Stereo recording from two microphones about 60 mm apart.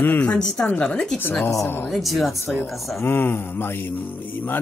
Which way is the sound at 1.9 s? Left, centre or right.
Centre.